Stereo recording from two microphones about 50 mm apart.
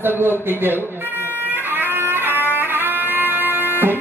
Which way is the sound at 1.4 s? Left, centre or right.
Right.